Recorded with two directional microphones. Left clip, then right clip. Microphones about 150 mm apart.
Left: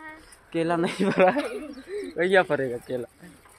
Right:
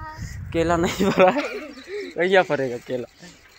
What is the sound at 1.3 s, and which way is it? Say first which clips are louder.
Speech: right 3 dB; 30° right (ahead or behind).